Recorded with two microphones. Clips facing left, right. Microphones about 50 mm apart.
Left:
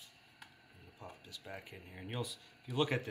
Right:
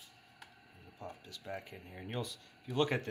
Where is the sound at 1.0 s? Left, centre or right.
Centre.